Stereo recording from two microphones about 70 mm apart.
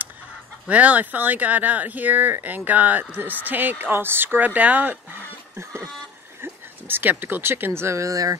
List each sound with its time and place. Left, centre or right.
0.7 s speech: right
5.6 s a sound: right
6.4 s speech: right